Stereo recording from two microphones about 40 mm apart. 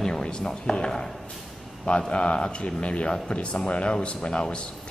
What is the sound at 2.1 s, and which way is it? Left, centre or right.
Speech, left.